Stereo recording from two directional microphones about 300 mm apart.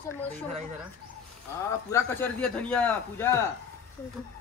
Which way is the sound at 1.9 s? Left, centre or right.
Centre.